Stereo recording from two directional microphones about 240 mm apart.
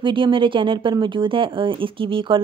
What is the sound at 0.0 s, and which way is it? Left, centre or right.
Speech, right.